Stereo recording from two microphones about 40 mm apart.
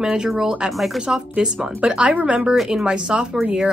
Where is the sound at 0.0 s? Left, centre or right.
Centre.